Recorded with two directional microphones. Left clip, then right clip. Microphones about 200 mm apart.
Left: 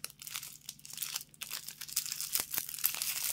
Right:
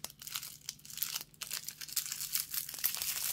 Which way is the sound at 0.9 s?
5° left (ahead or behind).